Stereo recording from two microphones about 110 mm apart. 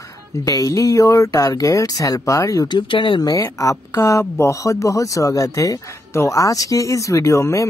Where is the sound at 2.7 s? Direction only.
50° left (ahead or behind).